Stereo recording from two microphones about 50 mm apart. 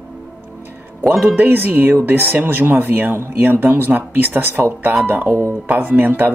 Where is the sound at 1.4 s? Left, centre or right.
Right.